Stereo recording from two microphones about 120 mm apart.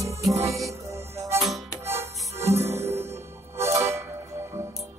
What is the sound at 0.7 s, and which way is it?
Music, 25° right (ahead or behind).